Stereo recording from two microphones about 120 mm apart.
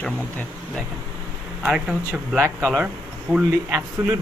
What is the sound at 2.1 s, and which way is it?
Speech, 20° right (ahead or behind).